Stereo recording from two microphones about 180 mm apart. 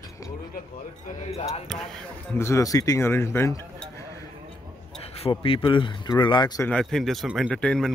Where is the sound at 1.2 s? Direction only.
35° left (ahead or behind).